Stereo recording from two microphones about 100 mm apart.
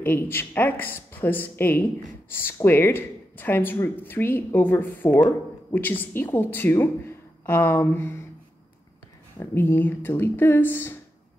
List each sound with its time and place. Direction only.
0.0 s speech: 20° left (ahead or behind)
9.4 s speech: 20° left (ahead or behind)